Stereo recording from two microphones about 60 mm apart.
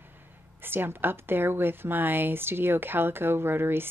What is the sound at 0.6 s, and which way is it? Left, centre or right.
A woman's voice, right.